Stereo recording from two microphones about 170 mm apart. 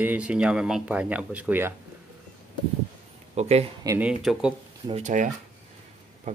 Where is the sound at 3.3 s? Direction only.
40° right (ahead or behind).